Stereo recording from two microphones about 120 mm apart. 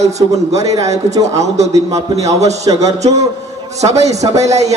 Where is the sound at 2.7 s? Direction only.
40° right (ahead or behind).